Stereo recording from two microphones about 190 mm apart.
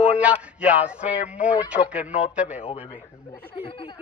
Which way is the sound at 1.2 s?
45° left (ahead or behind).